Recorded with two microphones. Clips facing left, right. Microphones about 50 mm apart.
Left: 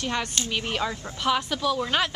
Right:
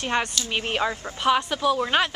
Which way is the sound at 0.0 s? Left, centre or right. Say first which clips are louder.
Right 3 dB; right.